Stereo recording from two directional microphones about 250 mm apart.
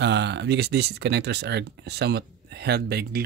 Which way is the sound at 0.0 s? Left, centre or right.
Right.